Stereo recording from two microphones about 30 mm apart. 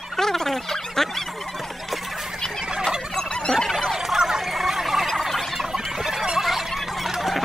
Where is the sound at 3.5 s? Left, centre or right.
Centre.